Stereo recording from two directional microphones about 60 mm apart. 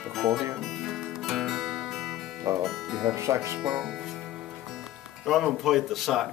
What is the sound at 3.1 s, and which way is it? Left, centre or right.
Speech, right.